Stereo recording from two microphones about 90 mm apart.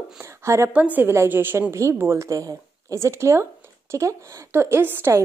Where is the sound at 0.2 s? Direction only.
30° right (ahead or behind).